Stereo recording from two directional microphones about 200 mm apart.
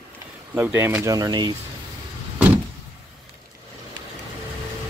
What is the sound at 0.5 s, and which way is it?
Speech, 10° right (ahead or behind).